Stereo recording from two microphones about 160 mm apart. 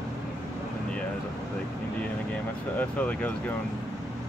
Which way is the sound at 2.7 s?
10° left (ahead or behind).